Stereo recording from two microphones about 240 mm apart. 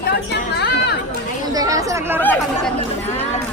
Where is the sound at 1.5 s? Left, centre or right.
Centre.